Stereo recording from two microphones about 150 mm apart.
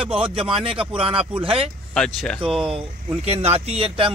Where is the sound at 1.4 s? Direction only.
40° right (ahead or behind).